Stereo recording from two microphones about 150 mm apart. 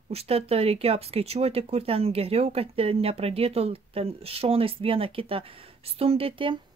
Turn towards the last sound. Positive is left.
turn(degrees=-35)  # may be behind; listen again after turning